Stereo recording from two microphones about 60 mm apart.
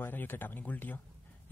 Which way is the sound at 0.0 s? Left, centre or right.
Left.